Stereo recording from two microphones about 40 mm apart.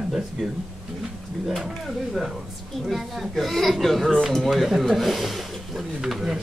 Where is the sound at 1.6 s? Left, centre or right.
Centre.